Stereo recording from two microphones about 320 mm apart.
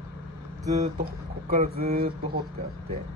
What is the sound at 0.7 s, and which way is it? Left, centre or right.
Speech, right.